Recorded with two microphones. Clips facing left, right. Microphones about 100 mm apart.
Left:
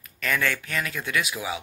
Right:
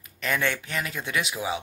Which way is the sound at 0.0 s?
20° right (ahead or behind).